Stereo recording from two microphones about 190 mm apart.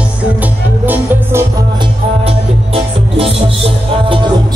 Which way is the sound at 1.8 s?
30° right (ahead or behind).